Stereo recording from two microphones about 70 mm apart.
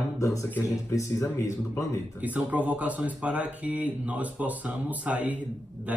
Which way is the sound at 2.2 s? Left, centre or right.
Right.